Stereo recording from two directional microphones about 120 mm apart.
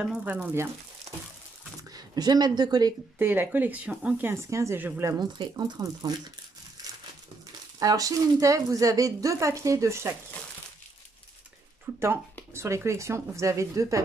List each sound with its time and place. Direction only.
0.0 s speech: 10° right (ahead or behind)
1.9 s speech: 35° right (ahead or behind)
3.2 s speech: 15° right (ahead or behind)
5.2 s speech: 35° right (ahead or behind)
7.8 s speech: 30° right (ahead or behind)
11.9 s a sound: 15° right (ahead or behind)
12.5 s speech: 25° right (ahead or behind)